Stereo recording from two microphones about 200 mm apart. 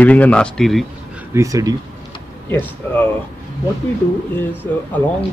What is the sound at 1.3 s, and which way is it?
Speech, 15° right (ahead or behind).